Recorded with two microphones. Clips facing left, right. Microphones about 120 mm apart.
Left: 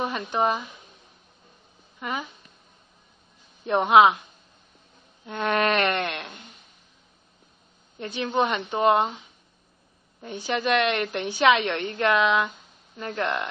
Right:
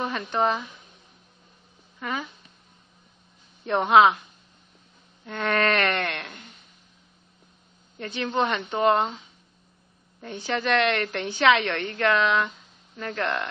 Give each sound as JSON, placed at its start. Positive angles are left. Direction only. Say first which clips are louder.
{"t": 0.0, "sound": "speech", "louder": "even", "side_deg": 10}
{"t": 2.0, "sound": "speech", "louder": "even", "side_deg": 15}
{"t": 3.6, "sound": "a woman's voice", "louder": "left 1 dB", "side_deg": 15}
{"t": 5.2, "sound": "a woman's voice", "louder": "left 1 dB", "side_deg": 20}
{"t": 8.0, "sound": "a woman's voice", "louder": "left 1 dB", "side_deg": 15}
{"t": 10.2, "sound": "a woman's voice", "louder": "left 1 dB", "side_deg": 15}